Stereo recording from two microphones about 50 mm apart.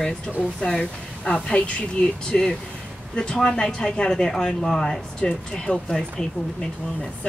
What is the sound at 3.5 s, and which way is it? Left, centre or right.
A woman's voice, centre.